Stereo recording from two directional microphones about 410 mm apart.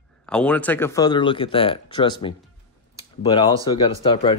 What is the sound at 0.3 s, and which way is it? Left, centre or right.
Speech, centre.